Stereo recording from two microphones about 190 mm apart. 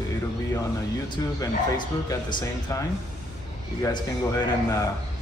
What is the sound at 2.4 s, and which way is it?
Speech, 15° left (ahead or behind).